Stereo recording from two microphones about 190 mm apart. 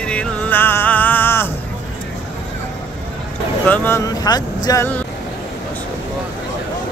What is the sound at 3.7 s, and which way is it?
Speech, 10° left (ahead or behind).